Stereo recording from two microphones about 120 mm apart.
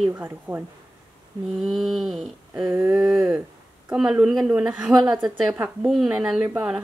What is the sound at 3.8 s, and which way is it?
Speech, 5° right (ahead or behind).